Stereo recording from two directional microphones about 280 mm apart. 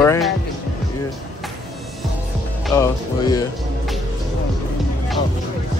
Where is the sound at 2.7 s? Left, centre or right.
Centre.